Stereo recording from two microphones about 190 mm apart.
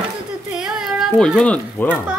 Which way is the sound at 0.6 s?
5° right (ahead or behind).